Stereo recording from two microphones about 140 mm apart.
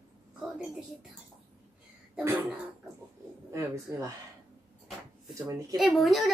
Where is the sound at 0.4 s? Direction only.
5° right (ahead or behind).